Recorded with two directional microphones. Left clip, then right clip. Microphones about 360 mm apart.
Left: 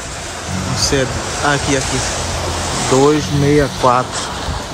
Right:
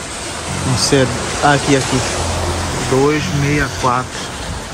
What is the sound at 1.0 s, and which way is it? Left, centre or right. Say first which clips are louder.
Speech: right 3 dB; right.